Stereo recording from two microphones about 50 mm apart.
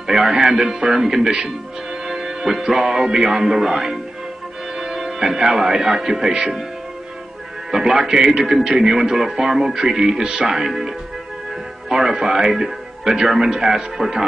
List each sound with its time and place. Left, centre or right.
0.4 s a man's voice: centre
7.7 s a man's voice: centre